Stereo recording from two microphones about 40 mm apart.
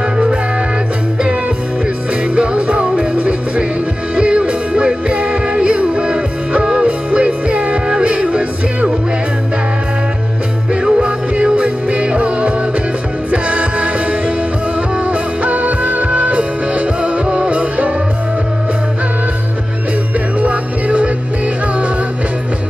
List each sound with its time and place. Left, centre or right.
2.3 s music: right
10.7 s music: right
20.3 s music: right